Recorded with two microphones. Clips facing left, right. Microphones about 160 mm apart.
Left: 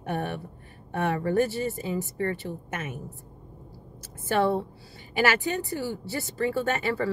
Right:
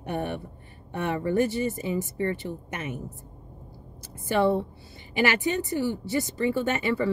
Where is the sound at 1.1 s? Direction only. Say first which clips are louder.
Right 2 dB; 20° right (ahead or behind).